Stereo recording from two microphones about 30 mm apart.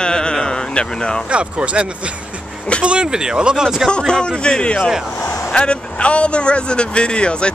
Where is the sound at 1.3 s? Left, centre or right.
Right.